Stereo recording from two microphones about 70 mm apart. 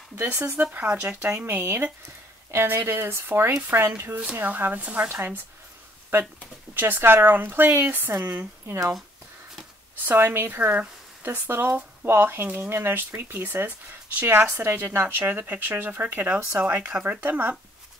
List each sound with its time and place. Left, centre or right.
0.2 s speech: right
1.2 s speech: right
6.7 s speech: right
10.0 s speech: right